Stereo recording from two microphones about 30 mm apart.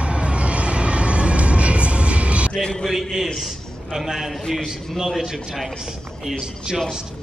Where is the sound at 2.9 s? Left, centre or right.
Centre.